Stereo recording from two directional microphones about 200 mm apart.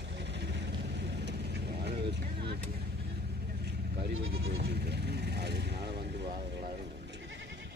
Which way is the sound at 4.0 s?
60° right (ahead or behind).